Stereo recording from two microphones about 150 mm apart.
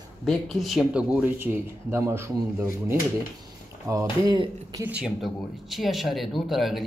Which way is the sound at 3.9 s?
25° right (ahead or behind).